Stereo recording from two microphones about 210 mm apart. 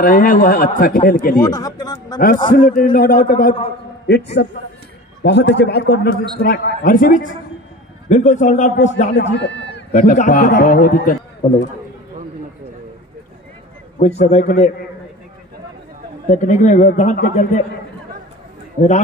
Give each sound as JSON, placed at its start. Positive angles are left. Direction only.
{"t": 0.0, "sound": "speech", "side_deg": 40}
{"t": 1.4, "sound": "speech", "side_deg": 15}
{"t": 2.5, "sound": "a man's voice", "side_deg": 40}
{"t": 9.1, "sound": "a man's voice", "side_deg": 55}
{"t": 9.9, "sound": "speech", "side_deg": 35}
{"t": 14.1, "sound": "speech", "side_deg": 40}
{"t": 16.3, "sound": "speech", "side_deg": 35}